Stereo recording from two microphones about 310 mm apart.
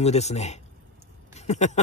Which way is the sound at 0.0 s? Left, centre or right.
Left.